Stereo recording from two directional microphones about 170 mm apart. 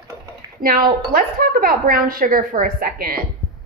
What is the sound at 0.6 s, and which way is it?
Speech, 60° right (ahead or behind).